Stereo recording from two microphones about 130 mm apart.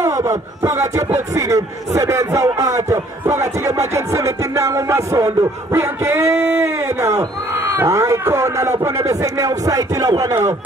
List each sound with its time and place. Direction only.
0.0 s music: 25° right (ahead or behind)